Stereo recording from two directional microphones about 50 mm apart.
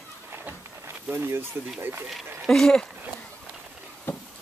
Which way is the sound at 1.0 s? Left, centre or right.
Right.